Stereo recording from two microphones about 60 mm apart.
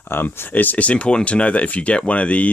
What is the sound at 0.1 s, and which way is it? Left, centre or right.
Speech, left.